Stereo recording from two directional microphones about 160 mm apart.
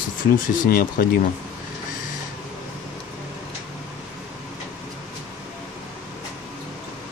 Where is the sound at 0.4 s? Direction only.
65° left (ahead or behind).